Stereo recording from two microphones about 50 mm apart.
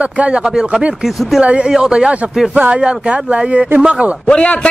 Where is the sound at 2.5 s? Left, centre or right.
Right.